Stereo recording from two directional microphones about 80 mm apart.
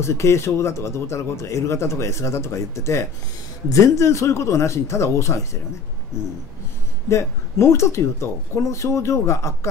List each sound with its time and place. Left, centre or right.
0.0 s a man's voice: left
7.1 s a man's voice: left